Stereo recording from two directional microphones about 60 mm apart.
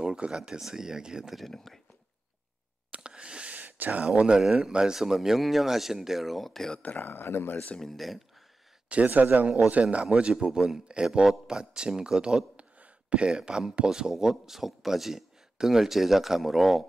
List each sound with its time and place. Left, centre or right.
0.0 s speech: centre
1.4 s speech: centre
2.9 s a sound: centre
4.0 s speech: centre
6.8 s speech: left
7.1 s speech: left
7.8 s speech: centre
8.8 s speech: right; by 16.8 s centre